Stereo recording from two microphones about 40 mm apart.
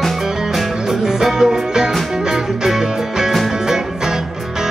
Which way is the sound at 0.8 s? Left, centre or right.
Centre.